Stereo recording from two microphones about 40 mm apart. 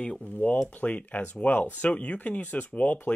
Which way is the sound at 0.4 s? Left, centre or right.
Left.